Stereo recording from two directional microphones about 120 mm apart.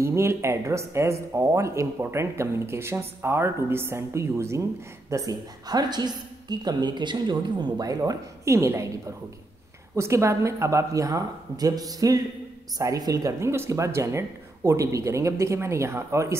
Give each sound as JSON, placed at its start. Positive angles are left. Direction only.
{"t": 0.0, "sound": "a woman's voice", "side_deg": -20}